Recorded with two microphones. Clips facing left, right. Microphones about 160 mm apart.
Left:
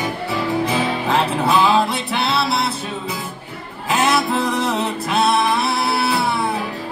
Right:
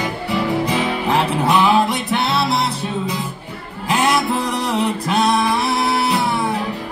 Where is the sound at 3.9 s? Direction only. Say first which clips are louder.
Even; 20° right (ahead or behind).